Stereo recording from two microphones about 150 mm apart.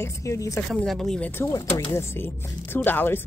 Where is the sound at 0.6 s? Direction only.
5° left (ahead or behind).